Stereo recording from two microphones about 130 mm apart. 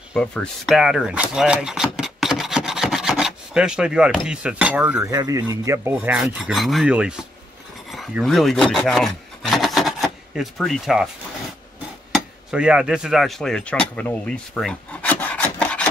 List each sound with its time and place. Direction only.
0.1 s a sound: 5° left (ahead or behind)
4.3 s speech: 10° right (ahead or behind)
5.0 s a man's voice: 25° right (ahead or behind)
6.4 s speech: centre (ahead or behind)
7.9 s rub: centre (ahead or behind)
12.1 s speech: 5° right (ahead or behind); by 15.9 s 10° left (ahead or behind)